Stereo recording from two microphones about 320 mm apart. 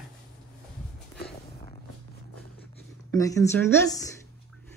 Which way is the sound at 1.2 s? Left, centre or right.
Centre.